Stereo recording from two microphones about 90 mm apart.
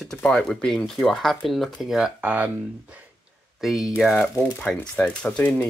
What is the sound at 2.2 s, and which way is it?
Speech, 20° right (ahead or behind).